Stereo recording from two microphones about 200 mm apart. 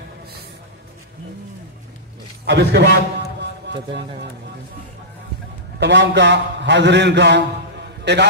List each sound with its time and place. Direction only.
2.4 s a man's voice: 60° right (ahead or behind)
3.3 s music: 60° right (ahead or behind)
5.8 s a man's voice: 60° right (ahead or behind)